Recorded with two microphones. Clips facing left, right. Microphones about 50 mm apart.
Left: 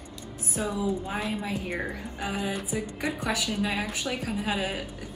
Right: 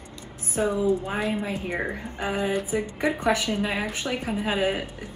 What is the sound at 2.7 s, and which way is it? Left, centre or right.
Speech, right.